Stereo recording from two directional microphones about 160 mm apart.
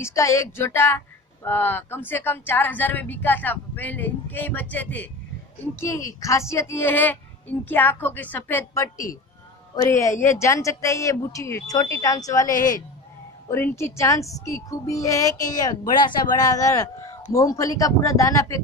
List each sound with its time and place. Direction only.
0.0 s speech: 20° left (ahead or behind)
12.5 s speech: 55° left (ahead or behind)
13.5 s speech: 15° left (ahead or behind)